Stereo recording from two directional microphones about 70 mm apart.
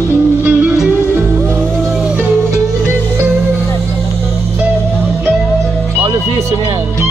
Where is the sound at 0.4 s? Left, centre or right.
Right.